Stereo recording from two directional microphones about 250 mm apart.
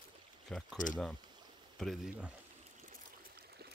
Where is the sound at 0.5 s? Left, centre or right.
Centre.